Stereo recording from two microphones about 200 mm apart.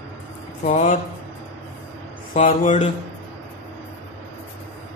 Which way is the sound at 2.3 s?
40° left (ahead or behind).